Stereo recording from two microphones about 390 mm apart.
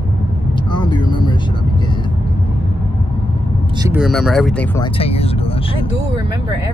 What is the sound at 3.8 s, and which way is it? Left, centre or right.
Speech, centre.